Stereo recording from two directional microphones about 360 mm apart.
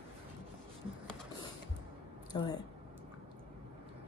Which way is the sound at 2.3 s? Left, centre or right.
Centre.